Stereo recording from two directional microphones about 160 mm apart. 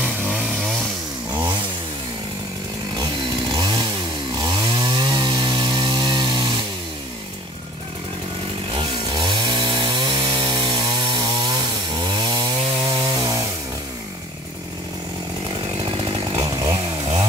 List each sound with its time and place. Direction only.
3.0 s chainsaw: 25° right (ahead or behind)
8.7 s chainsaw: 30° right (ahead or behind)
15.4 s chainsaw: 30° right (ahead or behind)